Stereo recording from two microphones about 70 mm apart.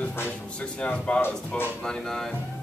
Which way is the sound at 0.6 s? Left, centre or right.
Centre.